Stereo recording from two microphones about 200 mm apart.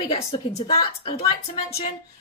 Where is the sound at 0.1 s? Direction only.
30° left (ahead or behind).